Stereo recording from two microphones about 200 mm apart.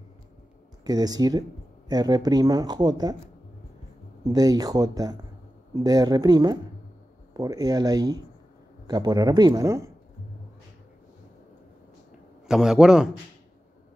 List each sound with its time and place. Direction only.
0.8 s speech: 20° right (ahead or behind)
4.3 s speech: 20° right (ahead or behind)
12.4 s a man's voice: 5° right (ahead or behind)